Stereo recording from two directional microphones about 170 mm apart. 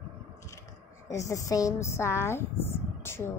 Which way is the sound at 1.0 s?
20° left (ahead or behind).